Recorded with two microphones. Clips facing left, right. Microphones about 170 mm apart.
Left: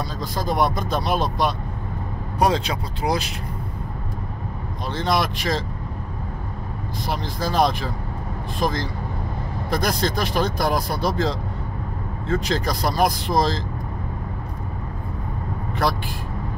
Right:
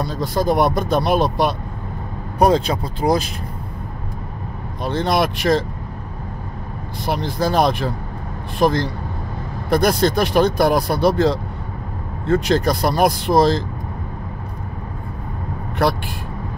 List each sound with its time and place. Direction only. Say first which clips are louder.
0.0 s speech: right 7 dB; 65° right (ahead or behind)
2.3 s speech: right 5 dB; 50° right (ahead or behind)
4.8 s speech: right 4 dB; 60° right (ahead or behind)
7.1 s speech: right 6 dB; 65° right (ahead or behind)